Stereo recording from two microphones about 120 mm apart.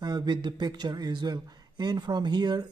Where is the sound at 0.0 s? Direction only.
35° right (ahead or behind).